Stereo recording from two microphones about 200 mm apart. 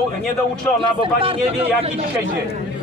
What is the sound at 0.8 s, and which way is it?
Speech, 25° right (ahead or behind).